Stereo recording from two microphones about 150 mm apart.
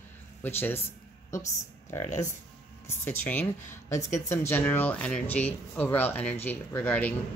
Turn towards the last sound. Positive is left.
turn(degrees=10)  # may be behind; listen again after turning